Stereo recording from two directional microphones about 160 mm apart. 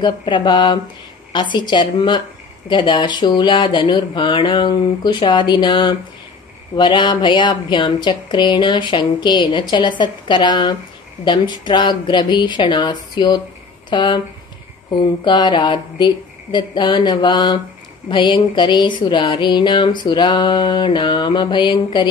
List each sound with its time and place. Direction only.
0.0 s speech: 30° left (ahead or behind)